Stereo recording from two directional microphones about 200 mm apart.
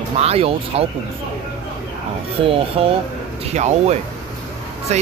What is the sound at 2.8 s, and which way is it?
Speech, 30° right (ahead or behind).